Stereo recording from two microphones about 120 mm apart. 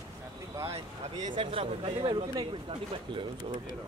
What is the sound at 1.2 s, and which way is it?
Speech, 45° right (ahead or behind).